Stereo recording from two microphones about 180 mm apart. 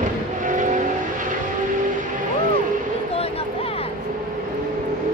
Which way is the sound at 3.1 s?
35° left (ahead or behind).